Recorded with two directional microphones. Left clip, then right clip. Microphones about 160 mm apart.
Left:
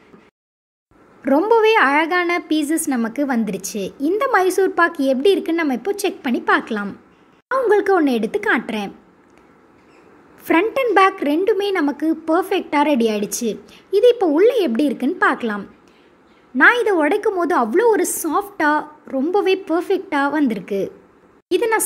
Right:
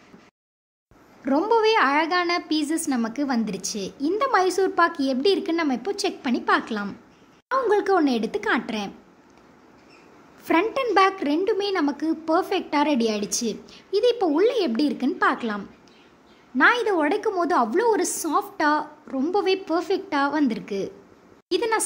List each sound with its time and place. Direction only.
1.2 s a woman's voice: 20° left (ahead or behind)
10.4 s a woman's voice: 15° left (ahead or behind)